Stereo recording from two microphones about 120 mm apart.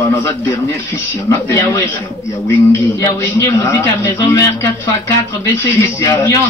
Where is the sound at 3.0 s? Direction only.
25° left (ahead or behind).